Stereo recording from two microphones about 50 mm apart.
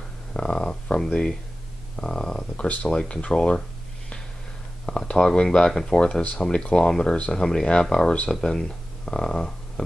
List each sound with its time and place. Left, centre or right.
0.3 s a sound: centre
2.0 s speech: centre
4.8 s speech: centre